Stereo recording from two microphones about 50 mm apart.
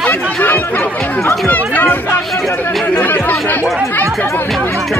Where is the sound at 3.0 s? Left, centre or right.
Left.